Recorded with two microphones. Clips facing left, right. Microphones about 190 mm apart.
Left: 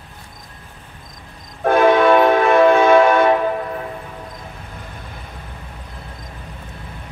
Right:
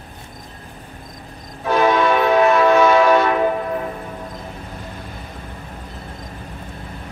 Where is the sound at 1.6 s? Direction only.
55° left (ahead or behind).